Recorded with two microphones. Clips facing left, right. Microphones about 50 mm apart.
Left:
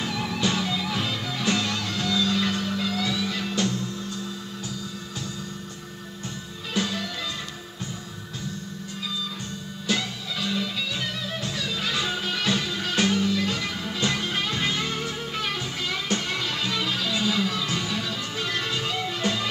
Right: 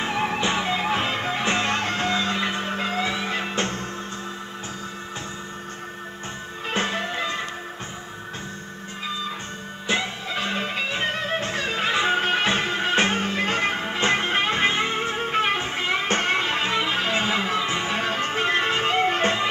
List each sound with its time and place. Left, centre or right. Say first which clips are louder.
0.0 s music: right 3 dB; right
6.7 s music: right 3 dB; right
9.8 s music: right 3 dB; right